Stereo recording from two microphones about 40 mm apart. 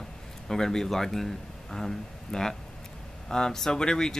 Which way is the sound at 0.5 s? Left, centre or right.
Centre.